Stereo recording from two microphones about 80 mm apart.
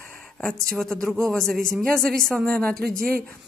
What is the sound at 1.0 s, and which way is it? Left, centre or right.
Speech, right.